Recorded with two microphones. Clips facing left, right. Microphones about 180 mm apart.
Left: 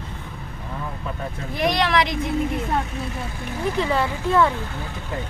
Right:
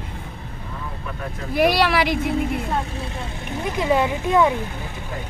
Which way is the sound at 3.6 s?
15° right (ahead or behind).